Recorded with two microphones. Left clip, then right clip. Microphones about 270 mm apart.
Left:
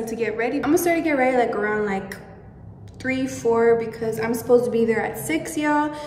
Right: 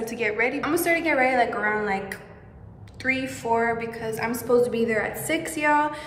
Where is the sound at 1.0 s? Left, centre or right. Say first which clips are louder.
Left 1 dB; right.